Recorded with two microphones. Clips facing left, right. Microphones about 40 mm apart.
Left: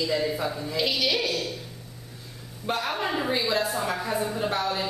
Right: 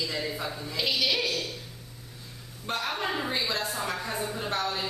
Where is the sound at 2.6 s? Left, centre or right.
Centre.